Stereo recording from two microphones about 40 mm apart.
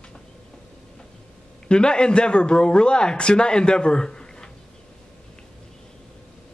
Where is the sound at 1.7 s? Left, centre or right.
Left.